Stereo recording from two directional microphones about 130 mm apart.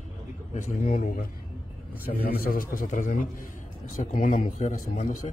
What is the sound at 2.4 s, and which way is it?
A man's voice, 90° left.